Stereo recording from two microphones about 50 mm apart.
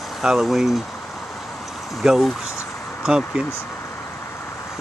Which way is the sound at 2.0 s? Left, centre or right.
Centre.